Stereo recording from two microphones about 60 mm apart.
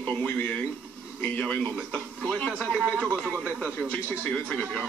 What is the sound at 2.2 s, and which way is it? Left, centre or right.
Speech, centre.